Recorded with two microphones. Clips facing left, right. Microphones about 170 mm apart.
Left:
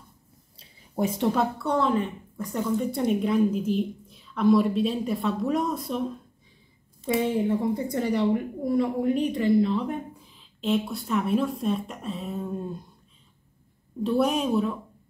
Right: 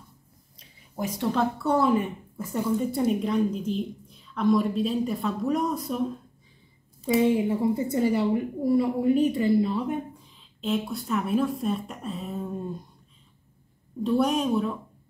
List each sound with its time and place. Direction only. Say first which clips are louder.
0.6 s a sound: left 5 dB; 30° left (ahead or behind)
1.3 s a woman's voice: right 1 dB; centre (ahead or behind)
7.1 s a woman's voice: right 2 dB; 5° right (ahead or behind)
14.0 s a woman's voice: even; centre (ahead or behind)